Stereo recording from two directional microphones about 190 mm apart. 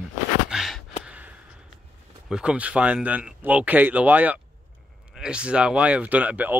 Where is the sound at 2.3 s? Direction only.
5° right (ahead or behind).